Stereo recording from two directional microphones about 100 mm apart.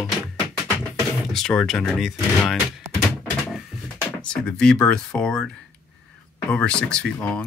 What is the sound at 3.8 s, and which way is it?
Speech, 10° left (ahead or behind).